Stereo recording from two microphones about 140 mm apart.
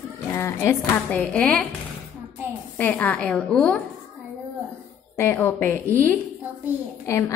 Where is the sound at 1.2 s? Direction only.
5° left (ahead or behind).